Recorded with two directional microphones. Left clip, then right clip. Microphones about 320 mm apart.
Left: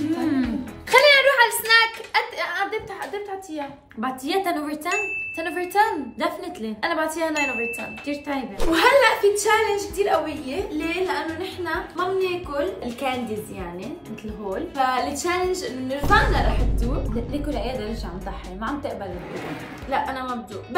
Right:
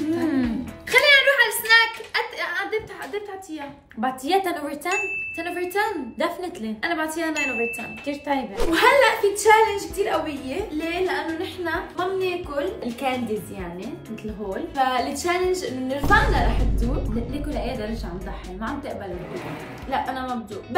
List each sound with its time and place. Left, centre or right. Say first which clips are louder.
0.0 s music: even; centre
4.0 s a woman's voice: right 2 dB; centre
5.6 s speech: left 4 dB; centre
6.1 s a woman's voice: even; centre
6.8 s speech: left 2 dB; centre
8.1 s a woman's voice: right 4 dB; centre
14.5 s a woman's voice: even; centre
19.9 s a woman's voice: left 1 dB; centre